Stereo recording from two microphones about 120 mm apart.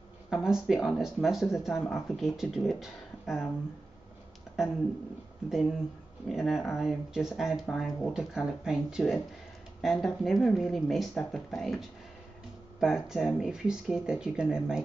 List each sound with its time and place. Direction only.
0.3 s speech: 5° right (ahead or behind)
5.5 s speech: centre (ahead or behind)
12.8 s speech: 5° right (ahead or behind)